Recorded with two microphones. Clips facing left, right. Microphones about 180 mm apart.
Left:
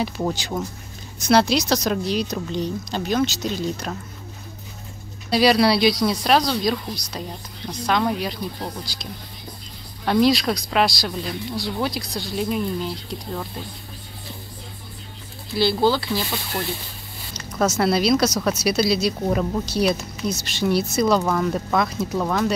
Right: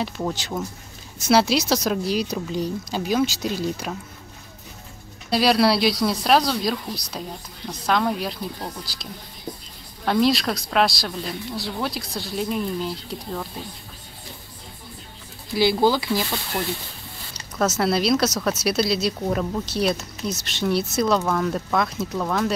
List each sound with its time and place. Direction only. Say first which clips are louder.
0.0 s speech: left 2 dB; centre (ahead or behind)
5.3 s speech: left 1 dB; centre (ahead or behind)
10.0 s speech: left 2 dB; centre (ahead or behind)
15.5 s speech: even; 15° right (ahead or behind)
17.6 s speech: left 2 dB; centre (ahead or behind)